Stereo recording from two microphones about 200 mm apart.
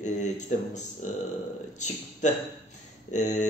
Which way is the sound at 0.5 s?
40° left (ahead or behind).